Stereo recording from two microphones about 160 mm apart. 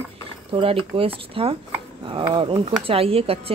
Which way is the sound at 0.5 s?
35° right (ahead or behind).